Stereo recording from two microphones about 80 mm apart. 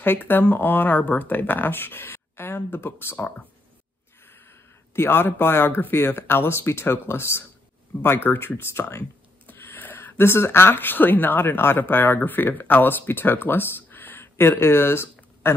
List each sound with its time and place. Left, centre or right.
0.0 s speech: left
4.9 s speech: left